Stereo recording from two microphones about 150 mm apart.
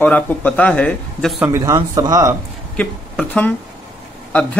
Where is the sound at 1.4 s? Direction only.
20° right (ahead or behind).